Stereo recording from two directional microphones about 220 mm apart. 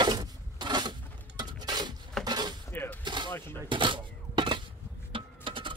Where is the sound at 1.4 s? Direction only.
20° right (ahead or behind).